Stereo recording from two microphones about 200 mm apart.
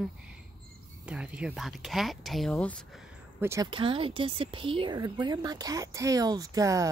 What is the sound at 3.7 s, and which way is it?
Speech, 25° right (ahead or behind).